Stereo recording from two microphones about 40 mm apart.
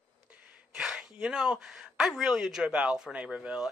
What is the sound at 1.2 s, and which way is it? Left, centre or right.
Speech, centre.